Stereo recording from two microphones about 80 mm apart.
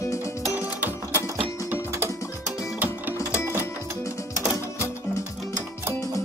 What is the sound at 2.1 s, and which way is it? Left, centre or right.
Music, left.